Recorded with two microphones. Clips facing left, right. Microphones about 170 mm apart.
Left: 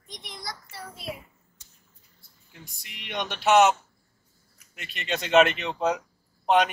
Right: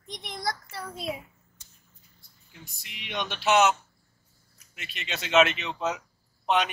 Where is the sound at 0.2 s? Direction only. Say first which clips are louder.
Right 5 dB; 55° right (ahead or behind).